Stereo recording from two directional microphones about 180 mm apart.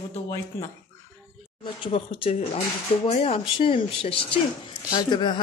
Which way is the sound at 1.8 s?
30° left (ahead or behind).